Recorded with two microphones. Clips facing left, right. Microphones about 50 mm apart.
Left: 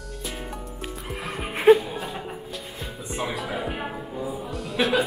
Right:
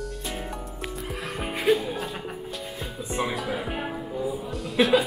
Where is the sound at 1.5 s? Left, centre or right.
Left.